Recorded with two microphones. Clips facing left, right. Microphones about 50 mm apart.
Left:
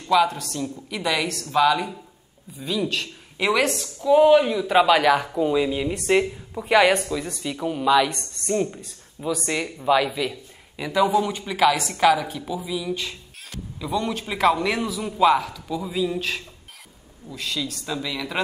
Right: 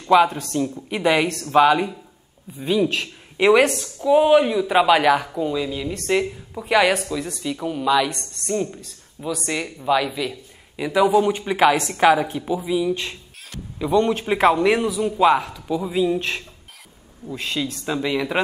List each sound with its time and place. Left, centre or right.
0.0 s a woman's voice: right
2.8 s speech: centre
5.5 s speech: centre
10.9 s a woman's voice: centre; by 14.5 s right
14.5 s a woman's voice: centre